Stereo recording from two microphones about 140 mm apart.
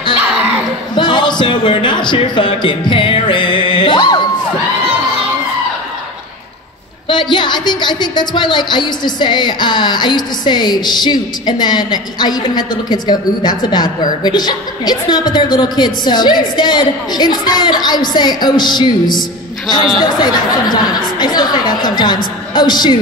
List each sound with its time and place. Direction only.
0.9 s speech: 35° left (ahead or behind)
7.1 s a woman's voice: 35° left (ahead or behind)
20.0 s a woman's voice: 30° left (ahead or behind)